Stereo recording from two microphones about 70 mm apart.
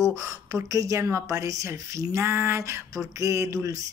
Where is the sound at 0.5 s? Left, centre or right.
Right.